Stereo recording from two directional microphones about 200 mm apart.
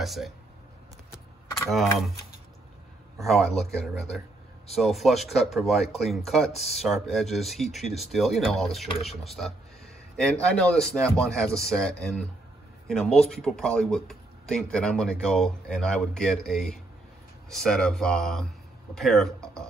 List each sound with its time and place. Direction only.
0.0 s speech: centre (ahead or behind)
3.2 s speech: centre (ahead or behind)